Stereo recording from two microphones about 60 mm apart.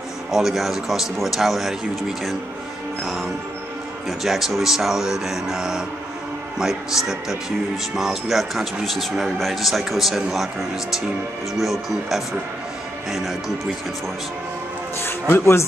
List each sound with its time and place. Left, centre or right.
0.3 s a man's voice: centre
3.0 s music: centre
4.2 s a man's voice: centre
15.0 s speech: left